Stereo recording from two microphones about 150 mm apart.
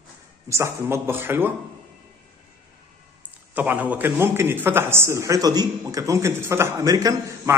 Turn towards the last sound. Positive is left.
turn(degrees=-20)  # may be behind; listen again after turning